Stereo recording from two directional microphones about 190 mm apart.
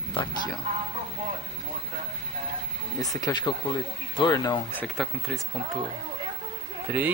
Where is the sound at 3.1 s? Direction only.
20° left (ahead or behind).